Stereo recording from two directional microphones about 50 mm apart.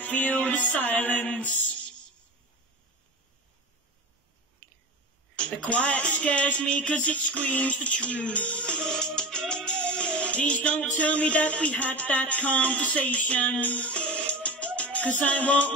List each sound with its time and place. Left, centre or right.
0.0 s music: left
5.3 s speech: left
8.8 s music: centre; by 15.7 s left